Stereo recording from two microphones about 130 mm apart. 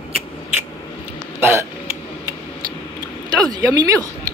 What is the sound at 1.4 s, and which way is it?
Hiccup, 20° right (ahead or behind).